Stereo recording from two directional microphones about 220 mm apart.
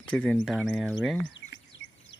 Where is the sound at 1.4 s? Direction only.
55° left (ahead or behind).